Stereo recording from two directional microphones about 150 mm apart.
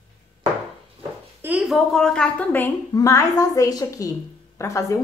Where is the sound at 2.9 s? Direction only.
20° left (ahead or behind).